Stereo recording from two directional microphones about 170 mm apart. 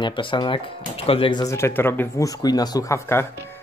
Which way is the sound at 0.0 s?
30° left (ahead or behind).